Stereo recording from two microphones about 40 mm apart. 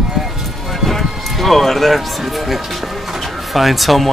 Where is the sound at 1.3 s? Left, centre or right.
Centre.